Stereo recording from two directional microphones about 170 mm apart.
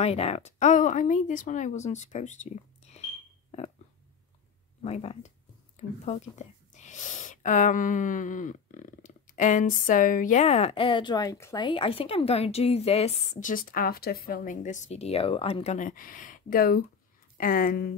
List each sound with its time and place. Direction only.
0.0 s speech: 35° left (ahead or behind)
3.5 s a sound: 40° left (ahead or behind)
4.8 s a woman's voice: 35° left (ahead or behind); by 11.6 s 15° left (ahead or behind)
11.6 s a woman's voice: 30° left (ahead or behind)
13.4 s a woman's voice: 55° left (ahead or behind)